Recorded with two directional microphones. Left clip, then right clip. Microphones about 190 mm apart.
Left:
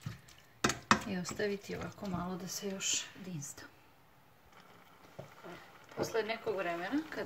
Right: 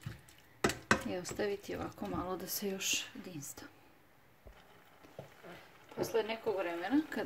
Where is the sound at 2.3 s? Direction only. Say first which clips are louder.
Right 2 dB; 50° right (ahead or behind).